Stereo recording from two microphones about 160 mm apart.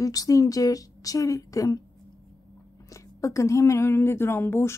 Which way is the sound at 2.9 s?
20° left (ahead or behind).